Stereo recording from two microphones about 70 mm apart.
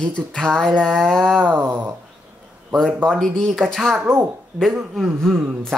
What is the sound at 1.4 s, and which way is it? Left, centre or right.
Speech, right.